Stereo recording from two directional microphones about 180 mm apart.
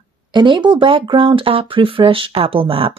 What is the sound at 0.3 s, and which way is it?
Speech, 25° right (ahead or behind).